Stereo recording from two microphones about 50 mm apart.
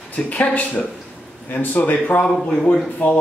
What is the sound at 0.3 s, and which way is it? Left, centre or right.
Speech, left.